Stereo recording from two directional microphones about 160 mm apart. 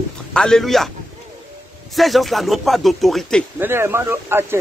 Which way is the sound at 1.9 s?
Centre (ahead or behind).